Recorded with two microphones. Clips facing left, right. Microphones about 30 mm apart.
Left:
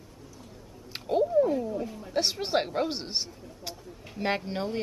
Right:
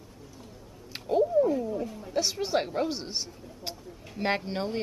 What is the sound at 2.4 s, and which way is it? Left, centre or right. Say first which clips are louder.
Speech: even; centre.